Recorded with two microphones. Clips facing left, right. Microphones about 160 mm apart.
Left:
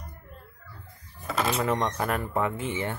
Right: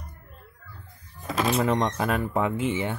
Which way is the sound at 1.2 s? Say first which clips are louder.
Right 3 dB; 15° right (ahead or behind).